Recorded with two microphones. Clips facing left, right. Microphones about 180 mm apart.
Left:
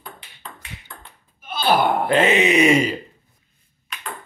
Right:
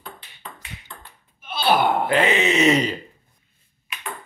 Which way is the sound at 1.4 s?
45° left (ahead or behind).